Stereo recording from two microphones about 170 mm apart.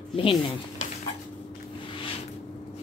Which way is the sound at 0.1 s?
30° left (ahead or behind).